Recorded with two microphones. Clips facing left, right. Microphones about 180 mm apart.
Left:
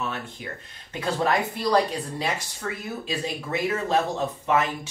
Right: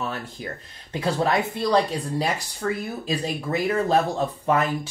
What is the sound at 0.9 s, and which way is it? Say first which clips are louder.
Speech: right 2 dB; 30° right (ahead or behind).